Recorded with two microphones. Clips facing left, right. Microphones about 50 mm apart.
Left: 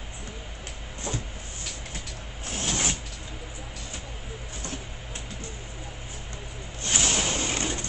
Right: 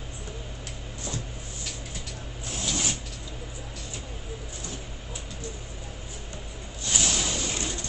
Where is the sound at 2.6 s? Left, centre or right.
Left.